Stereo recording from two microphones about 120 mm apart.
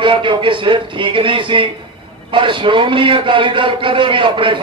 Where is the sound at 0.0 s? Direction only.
45° right (ahead or behind).